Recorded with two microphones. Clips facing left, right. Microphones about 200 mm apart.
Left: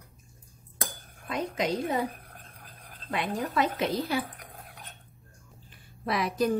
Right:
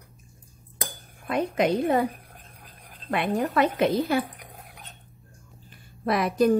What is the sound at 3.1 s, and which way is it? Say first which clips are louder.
A woman's voice: right 6 dB; 60° right (ahead or behind).